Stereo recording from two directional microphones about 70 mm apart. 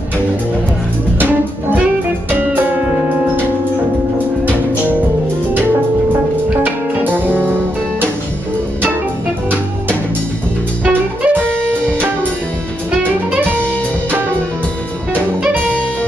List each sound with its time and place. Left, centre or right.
6.5 s music: right
10.9 s music: right